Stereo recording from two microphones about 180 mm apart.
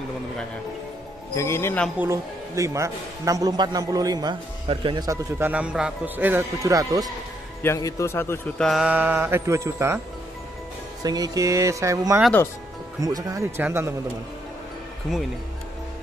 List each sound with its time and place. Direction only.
1.3 s speech: 15° left (ahead or behind)
2.0 s speech: 15° right (ahead or behind)
7.6 s speech: 15° left (ahead or behind); by 9.9 s 15° right (ahead or behind)
11.0 s speech: 20° right (ahead or behind)